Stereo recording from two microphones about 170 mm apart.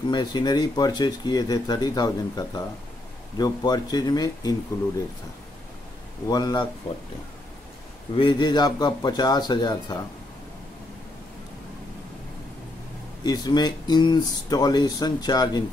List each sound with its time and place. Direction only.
0.1 s speech: 25° left (ahead or behind)
6.2 s speech: 25° left (ahead or behind)
8.2 s speech: 25° left (ahead or behind)
13.2 s speech: 25° left (ahead or behind)